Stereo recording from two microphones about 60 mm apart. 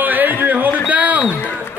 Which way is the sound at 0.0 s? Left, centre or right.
Right.